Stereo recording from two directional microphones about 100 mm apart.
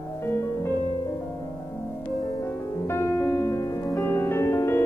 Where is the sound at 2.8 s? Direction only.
25° left (ahead or behind).